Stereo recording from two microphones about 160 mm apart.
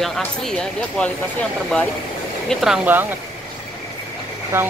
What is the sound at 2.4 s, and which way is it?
Speech, 5° right (ahead or behind).